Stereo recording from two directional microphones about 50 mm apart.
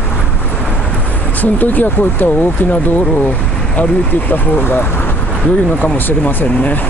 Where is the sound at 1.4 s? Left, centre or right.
Left.